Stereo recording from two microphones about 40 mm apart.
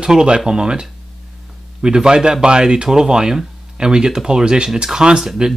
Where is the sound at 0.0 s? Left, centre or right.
Right.